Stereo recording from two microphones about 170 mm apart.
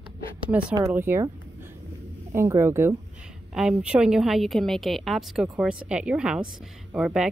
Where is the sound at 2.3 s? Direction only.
15° right (ahead or behind).